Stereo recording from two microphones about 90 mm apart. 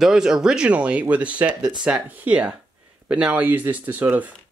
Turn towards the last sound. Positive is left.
turn(degrees=-20)  # may be behind; listen again after turning